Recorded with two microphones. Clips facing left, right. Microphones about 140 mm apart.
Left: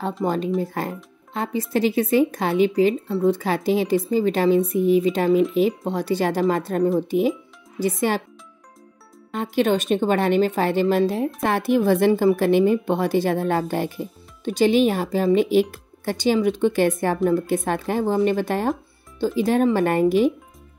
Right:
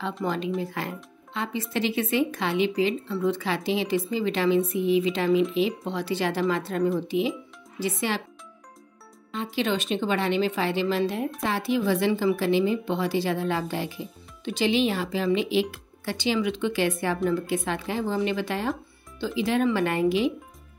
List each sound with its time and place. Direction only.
0.2 s a woman's voice: 45° left (ahead or behind)
9.3 s a woman's voice: 50° left (ahead or behind)